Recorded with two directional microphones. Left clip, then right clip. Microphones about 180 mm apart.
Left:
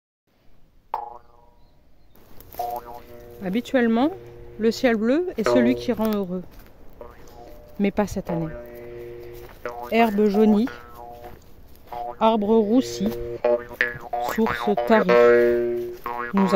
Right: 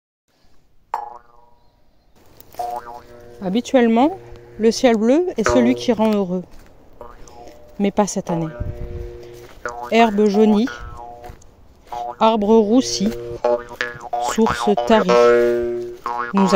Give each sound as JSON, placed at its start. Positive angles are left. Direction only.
{"t": 0.9, "sound": "a sound", "side_deg": -30}
{"t": 2.5, "sound": "speech", "side_deg": -20}
{"t": 5.8, "sound": "music", "side_deg": -25}
{"t": 7.4, "sound": "speech", "side_deg": -10}
{"t": 8.5, "sound": "music", "side_deg": -30}
{"t": 9.6, "sound": "a sound", "side_deg": -30}
{"t": 9.8, "sound": "speech", "side_deg": -10}
{"t": 12.2, "sound": "speech", "side_deg": -15}
{"t": 13.2, "sound": "music", "side_deg": -25}
{"t": 14.3, "sound": "speech", "side_deg": -20}
{"t": 15.0, "sound": "music", "side_deg": -30}